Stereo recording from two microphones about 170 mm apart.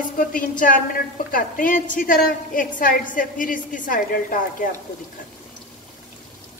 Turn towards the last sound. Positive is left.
turn(degrees=55)  # may be behind; listen again after turning